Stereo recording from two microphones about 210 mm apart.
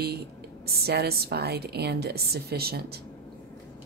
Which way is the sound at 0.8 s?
50° right (ahead or behind).